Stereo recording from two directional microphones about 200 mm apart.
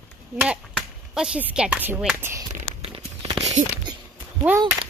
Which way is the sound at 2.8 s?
25° right (ahead or behind).